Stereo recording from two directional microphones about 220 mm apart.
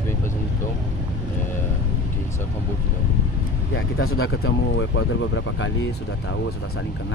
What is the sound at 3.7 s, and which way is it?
Speech, 70° left (ahead or behind).